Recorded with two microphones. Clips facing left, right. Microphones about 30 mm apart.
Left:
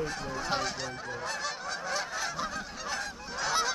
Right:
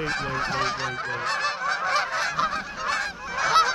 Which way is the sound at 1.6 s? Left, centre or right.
Right.